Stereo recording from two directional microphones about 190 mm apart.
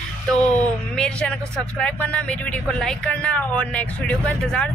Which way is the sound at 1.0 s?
5° left (ahead or behind).